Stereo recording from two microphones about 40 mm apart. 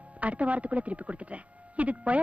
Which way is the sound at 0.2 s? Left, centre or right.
Right.